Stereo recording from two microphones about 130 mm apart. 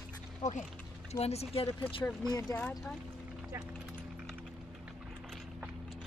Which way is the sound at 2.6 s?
10° left (ahead or behind).